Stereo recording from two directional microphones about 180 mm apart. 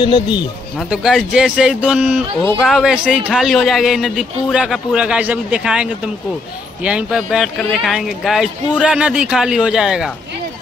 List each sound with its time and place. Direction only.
0.0 s speech: 25° left (ahead or behind)
0.8 s a man's voice: 5° right (ahead or behind)